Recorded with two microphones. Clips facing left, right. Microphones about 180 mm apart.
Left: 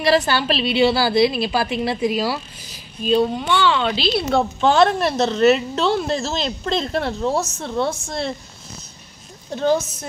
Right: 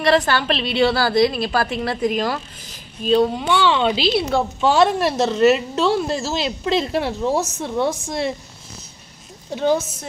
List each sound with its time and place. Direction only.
0.0 s a woman's voice: 5° left (ahead or behind)
3.4 s a woman's voice: 15° right (ahead or behind)
9.5 s a woman's voice: 10° right (ahead or behind)